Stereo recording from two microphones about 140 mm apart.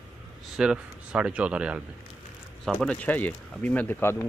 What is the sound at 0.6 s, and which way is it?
Speech, 5° right (ahead or behind).